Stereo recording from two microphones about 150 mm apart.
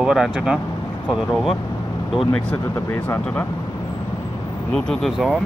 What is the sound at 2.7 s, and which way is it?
Speech, 15° left (ahead or behind).